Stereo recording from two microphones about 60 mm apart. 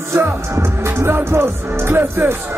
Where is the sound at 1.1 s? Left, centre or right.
Right.